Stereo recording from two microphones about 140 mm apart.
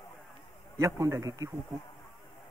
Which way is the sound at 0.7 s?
20° right (ahead or behind).